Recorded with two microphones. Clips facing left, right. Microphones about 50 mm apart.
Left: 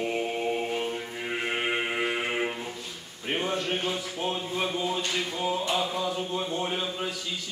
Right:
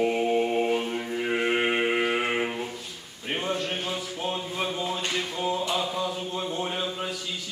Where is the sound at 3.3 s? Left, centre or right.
Centre.